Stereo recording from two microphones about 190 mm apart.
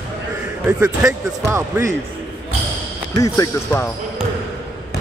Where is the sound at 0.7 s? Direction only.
15° right (ahead or behind).